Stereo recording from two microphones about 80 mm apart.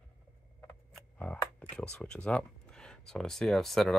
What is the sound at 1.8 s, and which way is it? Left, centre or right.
Speech, centre.